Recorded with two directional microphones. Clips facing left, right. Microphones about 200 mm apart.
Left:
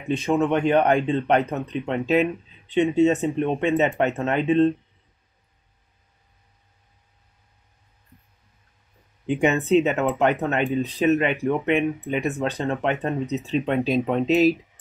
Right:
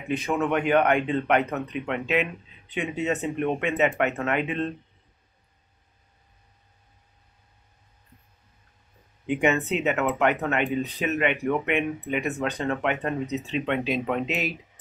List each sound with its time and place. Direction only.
0.1 s speech: 25° left (ahead or behind)
9.2 s speech: 35° left (ahead or behind)